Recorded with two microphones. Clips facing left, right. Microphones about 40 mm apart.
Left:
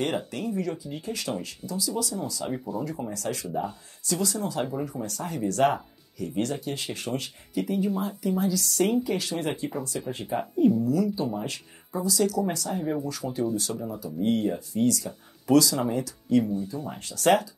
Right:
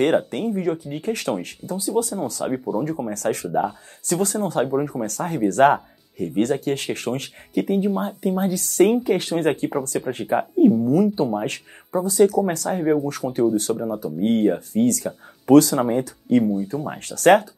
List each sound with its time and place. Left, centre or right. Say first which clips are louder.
0.3 s speech: right 7 dB; right
2.4 s speech: right 7 dB; right
3.1 s speech: right 8 dB; right
9.9 s speech: right 8 dB; right
10.3 s speech: right 6 dB; right